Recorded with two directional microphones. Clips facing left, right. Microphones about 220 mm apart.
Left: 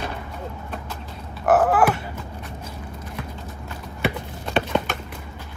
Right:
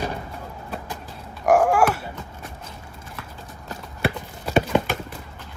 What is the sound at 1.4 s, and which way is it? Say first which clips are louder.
Dog: even; 10° right (ahead or behind).